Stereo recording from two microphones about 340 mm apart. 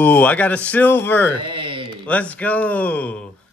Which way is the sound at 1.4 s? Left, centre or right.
Centre.